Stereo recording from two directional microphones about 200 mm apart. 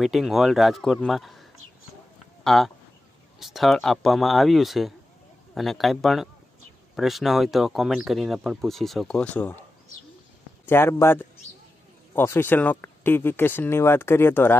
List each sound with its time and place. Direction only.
0.0 s speech: centre (ahead or behind)
10.7 s speech: 10° left (ahead or behind)